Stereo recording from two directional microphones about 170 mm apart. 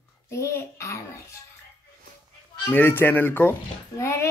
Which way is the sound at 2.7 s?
10° left (ahead or behind).